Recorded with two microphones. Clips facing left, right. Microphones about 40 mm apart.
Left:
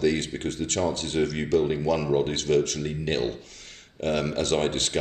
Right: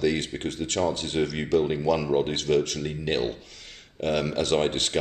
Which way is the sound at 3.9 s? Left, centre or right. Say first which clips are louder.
Even; centre.